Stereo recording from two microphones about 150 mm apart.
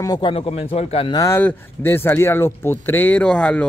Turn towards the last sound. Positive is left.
turn(degrees=10)  # may be behind; listen again after turning